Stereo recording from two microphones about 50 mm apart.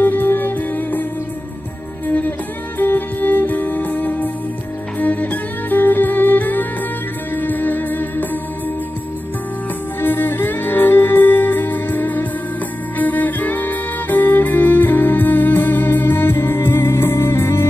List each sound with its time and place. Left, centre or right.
0.0 s music: left
2.0 s music: left
9.9 s music: left